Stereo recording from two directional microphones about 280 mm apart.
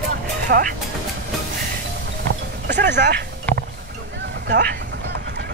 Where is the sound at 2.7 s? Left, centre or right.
Right.